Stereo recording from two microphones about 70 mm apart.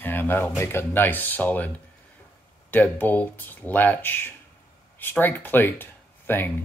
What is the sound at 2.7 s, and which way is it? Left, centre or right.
Speech, left.